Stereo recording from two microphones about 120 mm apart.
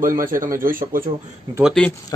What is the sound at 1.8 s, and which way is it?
Speech, 10° left (ahead or behind).